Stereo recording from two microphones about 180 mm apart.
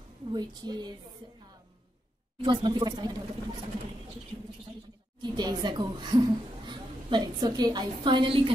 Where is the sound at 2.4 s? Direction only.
25° right (ahead or behind).